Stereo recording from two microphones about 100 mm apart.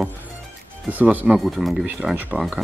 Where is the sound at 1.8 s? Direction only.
10° right (ahead or behind).